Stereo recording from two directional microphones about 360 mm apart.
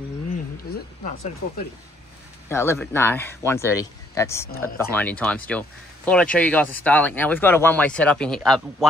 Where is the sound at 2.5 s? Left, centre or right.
Centre.